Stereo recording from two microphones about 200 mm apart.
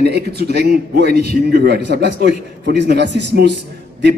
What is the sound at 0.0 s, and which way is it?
Speech, 55° right (ahead or behind).